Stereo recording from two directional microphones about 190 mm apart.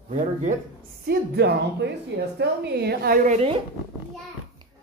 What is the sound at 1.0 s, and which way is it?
A woman's voice, 55° right (ahead or behind).